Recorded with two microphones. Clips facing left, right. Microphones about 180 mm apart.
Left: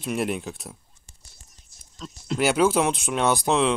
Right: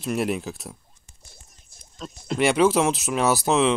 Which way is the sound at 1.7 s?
55° right (ahead or behind).